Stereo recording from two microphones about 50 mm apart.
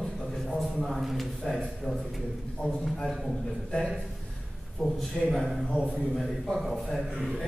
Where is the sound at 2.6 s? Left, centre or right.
Centre.